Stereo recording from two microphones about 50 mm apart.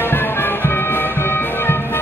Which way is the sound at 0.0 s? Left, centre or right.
Left.